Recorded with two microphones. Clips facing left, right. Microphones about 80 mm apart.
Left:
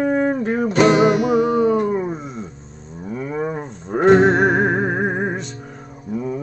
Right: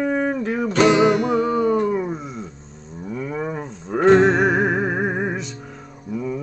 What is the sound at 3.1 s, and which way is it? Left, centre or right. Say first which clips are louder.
Cattle: left 2 dB; left.